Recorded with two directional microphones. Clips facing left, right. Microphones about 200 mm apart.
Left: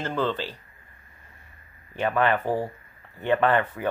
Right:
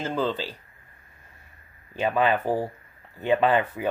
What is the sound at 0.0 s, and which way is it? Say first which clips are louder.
Speech: even; 5° right (ahead or behind).